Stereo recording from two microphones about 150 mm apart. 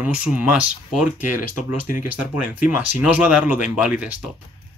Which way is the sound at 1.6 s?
60° left (ahead or behind).